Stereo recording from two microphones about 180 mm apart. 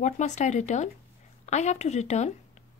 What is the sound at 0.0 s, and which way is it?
Speech, 40° left (ahead or behind).